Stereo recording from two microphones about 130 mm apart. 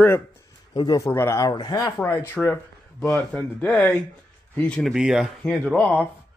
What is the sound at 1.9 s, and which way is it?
A man's voice, 15° left (ahead or behind).